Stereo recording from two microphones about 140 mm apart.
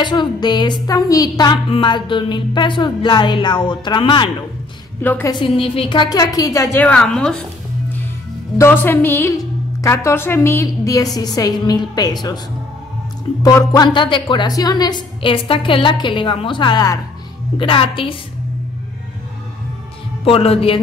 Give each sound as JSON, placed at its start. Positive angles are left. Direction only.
{"t": 0.0, "sound": "a woman's voice", "side_deg": 30}
{"t": 5.0, "sound": "a woman's voice", "side_deg": 15}
{"t": 5.3, "sound": "a woman's voice", "side_deg": 35}
{"t": 6.8, "sound": "a woman's voice", "side_deg": 5}
{"t": 8.5, "sound": "a woman's voice", "side_deg": 15}
{"t": 13.4, "sound": "a woman's voice", "side_deg": 25}
{"t": 20.2, "sound": "speech", "side_deg": 45}